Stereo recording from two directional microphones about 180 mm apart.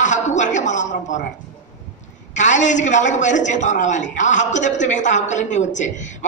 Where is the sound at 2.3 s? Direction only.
40° left (ahead or behind).